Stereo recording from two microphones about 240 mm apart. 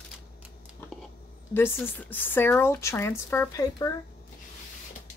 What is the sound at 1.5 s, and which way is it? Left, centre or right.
A woman's voice, centre.